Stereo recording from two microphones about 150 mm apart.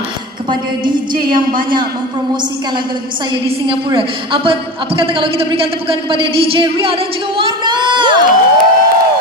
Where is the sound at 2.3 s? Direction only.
30° right (ahead or behind).